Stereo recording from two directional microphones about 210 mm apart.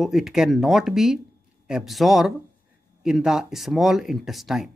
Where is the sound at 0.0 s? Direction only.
Centre (ahead or behind).